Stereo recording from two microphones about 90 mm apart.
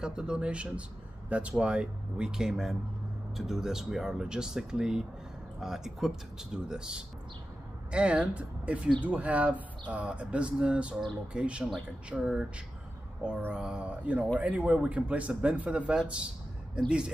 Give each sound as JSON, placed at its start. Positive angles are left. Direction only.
{"t": 0.0, "sound": "speech", "side_deg": -10}
{"t": 13.4, "sound": "speech", "side_deg": -20}